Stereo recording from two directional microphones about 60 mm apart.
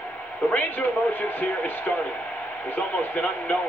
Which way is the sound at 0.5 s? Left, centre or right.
Left.